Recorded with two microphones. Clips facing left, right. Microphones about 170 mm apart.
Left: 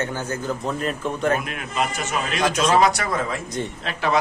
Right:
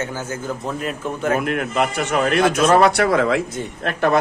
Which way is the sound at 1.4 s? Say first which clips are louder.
Right 6 dB; 60° right (ahead or behind).